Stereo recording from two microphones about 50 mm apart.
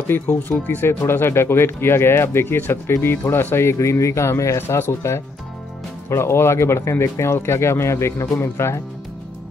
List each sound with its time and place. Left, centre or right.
0.4 s speech: left
4.6 s speech: left